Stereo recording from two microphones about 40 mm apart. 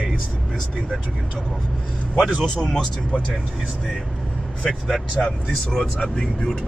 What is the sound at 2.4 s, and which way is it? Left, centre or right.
Speech, centre.